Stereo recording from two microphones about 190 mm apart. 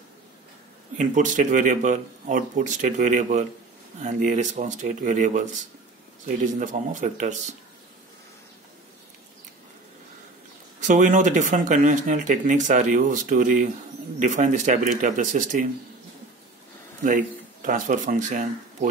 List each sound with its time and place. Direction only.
0.9 s speech: 40° right (ahead or behind)
10.8 s speech: 40° right (ahead or behind)
17.0 s speech: 45° right (ahead or behind)